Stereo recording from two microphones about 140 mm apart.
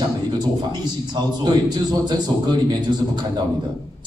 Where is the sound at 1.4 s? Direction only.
30° right (ahead or behind).